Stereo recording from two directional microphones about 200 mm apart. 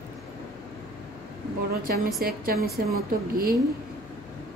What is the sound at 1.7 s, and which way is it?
A woman's voice, 50° right (ahead or behind).